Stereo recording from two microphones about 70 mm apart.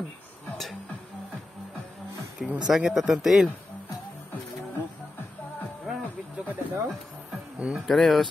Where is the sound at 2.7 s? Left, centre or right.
Centre.